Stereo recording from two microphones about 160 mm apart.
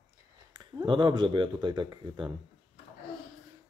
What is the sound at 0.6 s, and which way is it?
Speech, 30° right (ahead or behind).